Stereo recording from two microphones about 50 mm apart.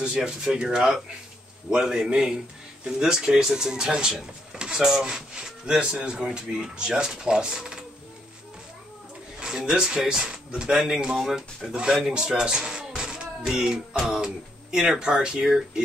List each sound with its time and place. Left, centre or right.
0.0 s speech: centre
4.6 s drawer open or close: centre
4.8 s speech: centre
9.4 s speech: centre